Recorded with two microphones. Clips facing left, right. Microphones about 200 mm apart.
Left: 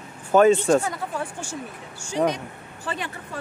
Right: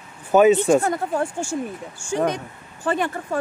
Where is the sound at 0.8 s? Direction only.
50° right (ahead or behind).